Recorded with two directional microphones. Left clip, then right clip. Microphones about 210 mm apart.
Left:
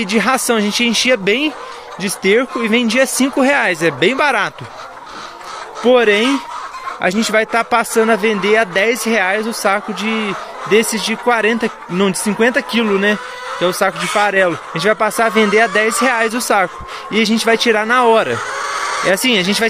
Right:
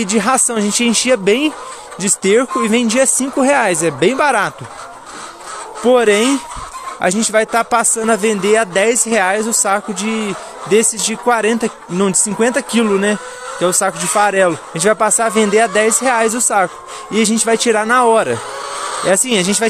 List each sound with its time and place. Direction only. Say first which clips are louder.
0.0 s a man's voice: even; 10° right (ahead or behind)
5.9 s a man's voice: even; 10° right (ahead or behind)